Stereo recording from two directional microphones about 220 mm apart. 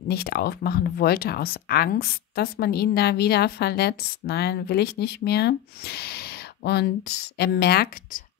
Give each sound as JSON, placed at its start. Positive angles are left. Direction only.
{"t": 0.1, "sound": "speech", "side_deg": 45}